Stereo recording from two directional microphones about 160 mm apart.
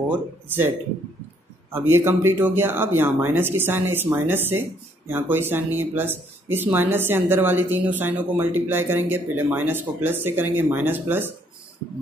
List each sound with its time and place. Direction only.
1.7 s speech: 15° right (ahead or behind)